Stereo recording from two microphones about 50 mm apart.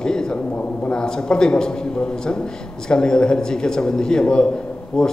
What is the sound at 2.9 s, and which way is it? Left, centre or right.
A man's voice, centre.